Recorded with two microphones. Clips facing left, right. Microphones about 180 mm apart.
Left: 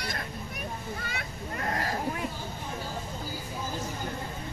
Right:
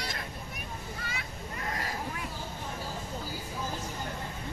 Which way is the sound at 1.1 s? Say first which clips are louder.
Left 3 dB; 50° left (ahead or behind).